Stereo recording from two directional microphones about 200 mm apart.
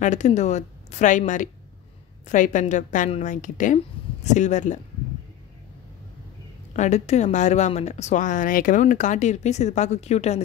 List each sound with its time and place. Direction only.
0.0 s a woman's voice: 35° left (ahead or behind)
6.7 s a woman's voice: 35° left (ahead or behind)